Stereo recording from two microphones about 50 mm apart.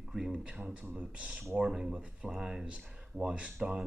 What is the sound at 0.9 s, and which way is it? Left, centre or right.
Speech, right.